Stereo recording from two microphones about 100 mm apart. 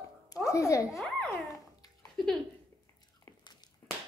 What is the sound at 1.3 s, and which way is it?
Dog, 35° left (ahead or behind).